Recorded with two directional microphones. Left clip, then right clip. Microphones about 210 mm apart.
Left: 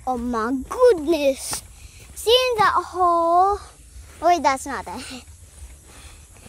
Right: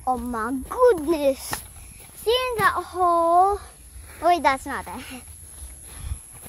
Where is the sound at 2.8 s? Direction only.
10° left (ahead or behind).